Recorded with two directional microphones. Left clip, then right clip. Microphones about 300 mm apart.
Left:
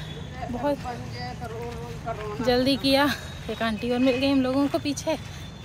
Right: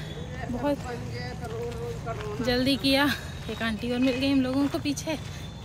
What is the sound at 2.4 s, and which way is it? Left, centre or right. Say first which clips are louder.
Speech: left 3 dB; centre.